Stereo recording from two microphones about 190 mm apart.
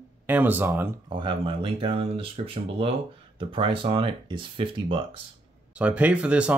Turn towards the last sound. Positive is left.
turn(degrees=-5)  # may be behind; listen again after turning